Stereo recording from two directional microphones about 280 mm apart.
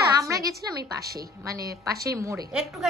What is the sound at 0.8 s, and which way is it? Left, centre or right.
Speech, right.